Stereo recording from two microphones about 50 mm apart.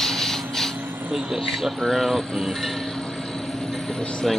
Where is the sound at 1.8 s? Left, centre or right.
Centre.